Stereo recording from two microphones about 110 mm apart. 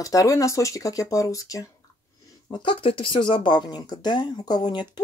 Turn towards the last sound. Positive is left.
turn(degrees=40)  # may be behind; listen again after turning